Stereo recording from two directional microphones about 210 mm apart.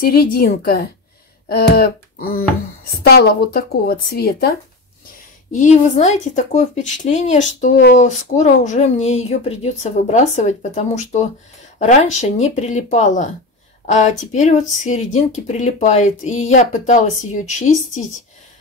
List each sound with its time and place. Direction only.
0.0 s a woman's voice: 45° left (ahead or behind)
5.5 s speech: 35° left (ahead or behind)